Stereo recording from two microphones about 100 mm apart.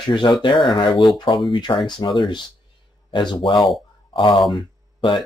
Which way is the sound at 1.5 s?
50° left (ahead or behind).